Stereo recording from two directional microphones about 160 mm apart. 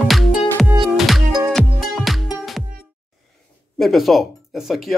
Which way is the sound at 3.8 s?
Centre (ahead or behind).